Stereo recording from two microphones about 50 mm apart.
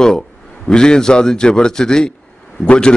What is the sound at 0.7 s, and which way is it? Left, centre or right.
A man's voice, centre.